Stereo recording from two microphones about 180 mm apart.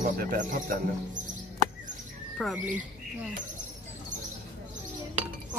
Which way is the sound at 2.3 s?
Centre (ahead or behind).